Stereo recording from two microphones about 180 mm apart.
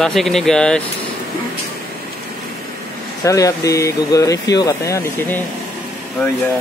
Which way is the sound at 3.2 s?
20° left (ahead or behind).